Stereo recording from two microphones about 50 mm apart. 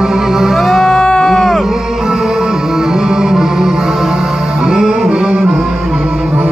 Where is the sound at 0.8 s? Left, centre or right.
Centre.